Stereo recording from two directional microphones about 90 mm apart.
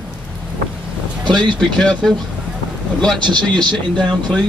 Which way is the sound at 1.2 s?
55° right (ahead or behind).